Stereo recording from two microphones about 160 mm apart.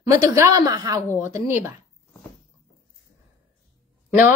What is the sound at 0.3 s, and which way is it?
A woman's voice, 20° right (ahead or behind).